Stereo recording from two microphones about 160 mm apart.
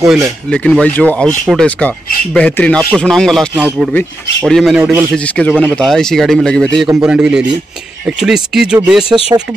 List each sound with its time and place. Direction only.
0.0 s speech: centre (ahead or behind)
3.5 s speech: 10° right (ahead or behind)
9.3 s speech: 20° right (ahead or behind)